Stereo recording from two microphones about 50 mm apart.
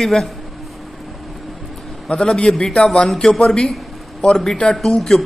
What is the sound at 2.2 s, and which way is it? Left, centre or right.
Speech, centre.